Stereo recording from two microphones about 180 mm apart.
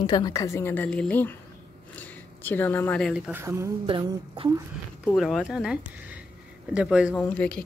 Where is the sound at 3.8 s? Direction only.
25° right (ahead or behind).